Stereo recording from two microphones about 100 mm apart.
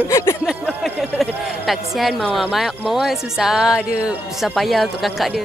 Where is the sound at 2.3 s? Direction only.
5° right (ahead or behind).